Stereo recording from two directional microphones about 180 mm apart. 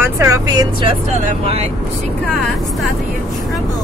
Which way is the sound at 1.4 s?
35° right (ahead or behind).